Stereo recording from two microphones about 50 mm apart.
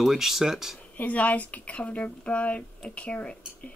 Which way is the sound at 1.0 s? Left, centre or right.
Left.